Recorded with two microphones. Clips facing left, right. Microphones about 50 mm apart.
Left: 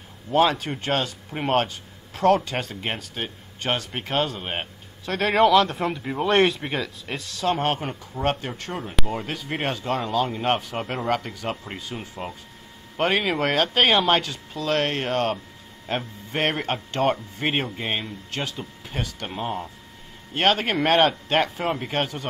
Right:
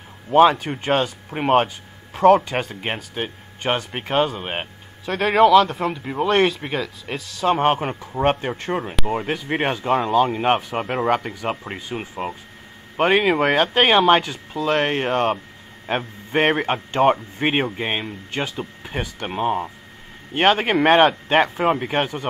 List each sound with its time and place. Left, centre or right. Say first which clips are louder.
0.3 s speech: right 6 dB; centre
7.5 s speech: right 8 dB; centre
7.8 s speech: right 6 dB; right
8.3 s speech: right 5 dB; right
20.3 s speech: right 4 dB; right